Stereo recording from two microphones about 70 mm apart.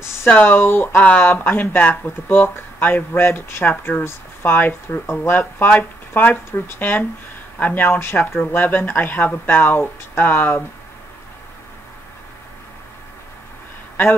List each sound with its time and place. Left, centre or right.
0.4 s speech: left
0.9 s speech: left